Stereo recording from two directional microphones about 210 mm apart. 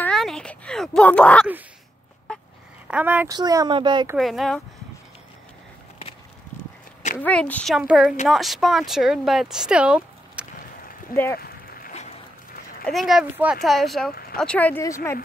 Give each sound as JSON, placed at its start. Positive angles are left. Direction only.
{"t": 0.0, "sound": "a sound", "side_deg": 0}
{"t": 2.3, "sound": "duck", "side_deg": 5}
{"t": 2.9, "sound": "speech", "side_deg": -5}
{"t": 3.3, "sound": "speech", "side_deg": -20}
{"t": 4.2, "sound": "speech", "side_deg": 0}
{"t": 7.2, "sound": "speech", "side_deg": 5}
{"t": 11.1, "sound": "speech", "side_deg": 40}
{"t": 12.8, "sound": "speech", "side_deg": 0}